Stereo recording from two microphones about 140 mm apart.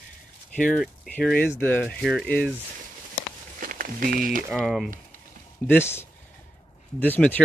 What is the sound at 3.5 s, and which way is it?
Speech, 80° right.